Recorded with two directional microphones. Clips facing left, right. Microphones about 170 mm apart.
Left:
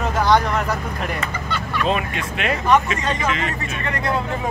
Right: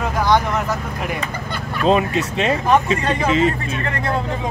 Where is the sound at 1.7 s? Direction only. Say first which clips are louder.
Right 6 dB; 35° right (ahead or behind).